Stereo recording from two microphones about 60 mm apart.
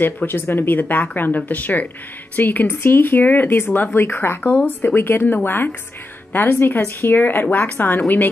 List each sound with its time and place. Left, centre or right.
0.0 s speech: left
4.4 s a woman's voice: left
4.6 s a woman's voice: left